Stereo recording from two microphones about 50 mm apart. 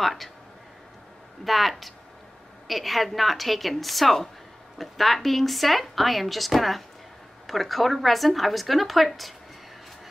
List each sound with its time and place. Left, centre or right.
0.0 s speech: centre
1.4 s speech: centre